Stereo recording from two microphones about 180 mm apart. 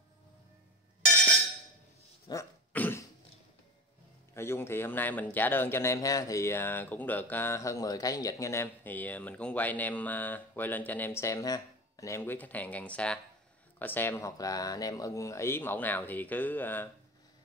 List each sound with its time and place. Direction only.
2.3 s a sound: 25° left (ahead or behind)
2.7 s cough: 10° left (ahead or behind)
4.3 s a man's voice: 15° left (ahead or behind)